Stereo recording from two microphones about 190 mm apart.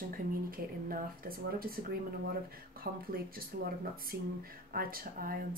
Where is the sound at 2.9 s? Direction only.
55° right (ahead or behind).